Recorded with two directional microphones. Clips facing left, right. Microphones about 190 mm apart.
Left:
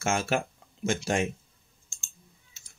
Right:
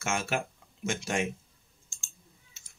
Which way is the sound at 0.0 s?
35° left (ahead or behind).